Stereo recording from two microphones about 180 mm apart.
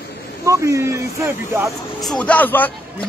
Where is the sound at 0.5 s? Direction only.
15° right (ahead or behind).